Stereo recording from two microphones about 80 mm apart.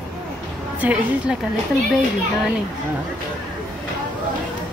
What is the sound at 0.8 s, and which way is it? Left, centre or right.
Speech, centre.